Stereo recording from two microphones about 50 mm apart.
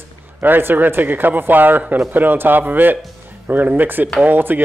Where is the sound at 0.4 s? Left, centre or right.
Right.